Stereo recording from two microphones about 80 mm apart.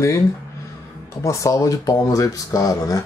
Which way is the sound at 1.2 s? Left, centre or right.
Left.